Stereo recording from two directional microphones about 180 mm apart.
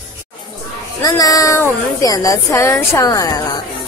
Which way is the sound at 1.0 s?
20° left (ahead or behind).